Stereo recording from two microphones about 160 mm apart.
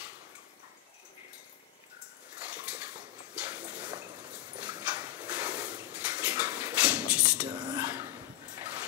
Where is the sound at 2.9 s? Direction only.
10° right (ahead or behind).